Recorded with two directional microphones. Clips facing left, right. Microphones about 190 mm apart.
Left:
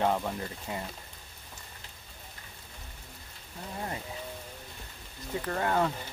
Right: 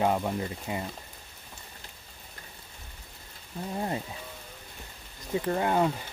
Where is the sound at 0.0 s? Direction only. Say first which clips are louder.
Right 2 dB; 10° right (ahead or behind).